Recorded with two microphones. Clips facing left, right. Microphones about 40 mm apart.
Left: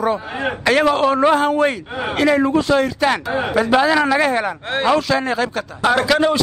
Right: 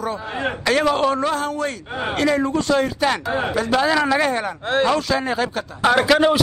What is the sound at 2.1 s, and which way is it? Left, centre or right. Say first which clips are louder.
Speech: left 4 dB; centre.